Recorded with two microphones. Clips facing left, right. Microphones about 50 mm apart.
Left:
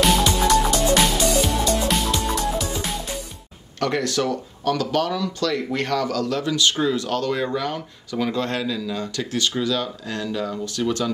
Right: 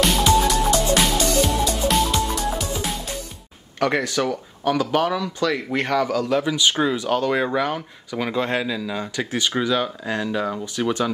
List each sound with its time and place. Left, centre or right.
0.0 s music: centre
3.8 s speech: centre